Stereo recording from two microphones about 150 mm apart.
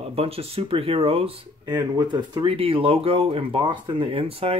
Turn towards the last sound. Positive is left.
turn(degrees=-40)  # may be behind; listen again after turning